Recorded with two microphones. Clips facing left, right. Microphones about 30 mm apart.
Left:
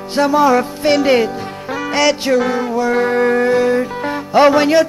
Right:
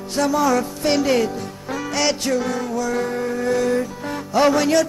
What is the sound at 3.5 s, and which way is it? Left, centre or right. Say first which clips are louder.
Music: left 5 dB; left.